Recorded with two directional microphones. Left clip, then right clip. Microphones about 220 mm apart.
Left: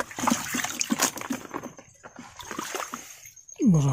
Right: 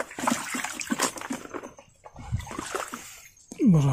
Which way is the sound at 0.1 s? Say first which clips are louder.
Left 1 dB; 30° left (ahead or behind).